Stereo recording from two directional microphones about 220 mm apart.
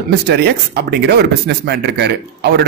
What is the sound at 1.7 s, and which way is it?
Speech, 45° right (ahead or behind).